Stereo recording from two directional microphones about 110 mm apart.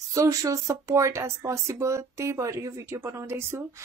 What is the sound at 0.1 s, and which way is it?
Speech, 30° right (ahead or behind).